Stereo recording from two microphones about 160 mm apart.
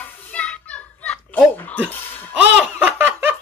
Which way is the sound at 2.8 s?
15° right (ahead or behind).